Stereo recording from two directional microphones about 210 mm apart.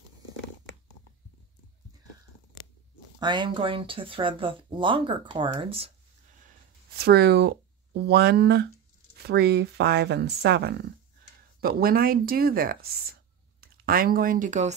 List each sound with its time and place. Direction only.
3.2 s speech: 20° right (ahead or behind)
7.0 s speech: 50° right (ahead or behind); by 14.8 s 35° right (ahead or behind)